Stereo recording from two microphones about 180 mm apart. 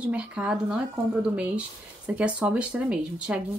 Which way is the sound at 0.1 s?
5° right (ahead or behind).